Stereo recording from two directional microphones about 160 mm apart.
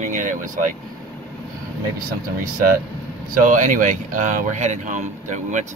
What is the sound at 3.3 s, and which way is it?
Speech, 55° right (ahead or behind).